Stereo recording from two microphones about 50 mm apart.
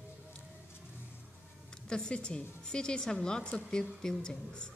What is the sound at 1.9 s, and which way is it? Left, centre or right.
Speech, centre.